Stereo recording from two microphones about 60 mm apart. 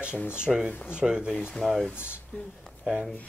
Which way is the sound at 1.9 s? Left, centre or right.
Left.